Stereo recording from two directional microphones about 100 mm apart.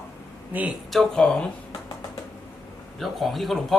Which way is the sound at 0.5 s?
15° right (ahead or behind).